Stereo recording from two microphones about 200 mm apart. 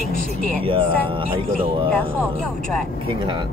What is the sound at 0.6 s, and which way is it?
A man's voice, 25° right (ahead or behind).